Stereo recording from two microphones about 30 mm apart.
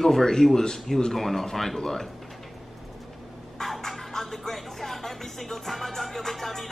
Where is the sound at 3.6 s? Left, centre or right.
Centre.